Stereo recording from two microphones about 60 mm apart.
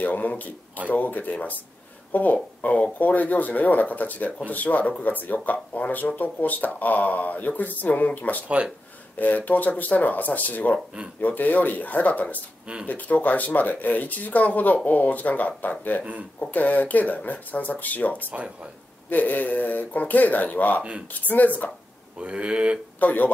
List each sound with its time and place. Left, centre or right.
0.0 s speech: left
18.3 s speech: centre
19.0 s speech: left
22.2 s speech: centre
22.9 s speech: left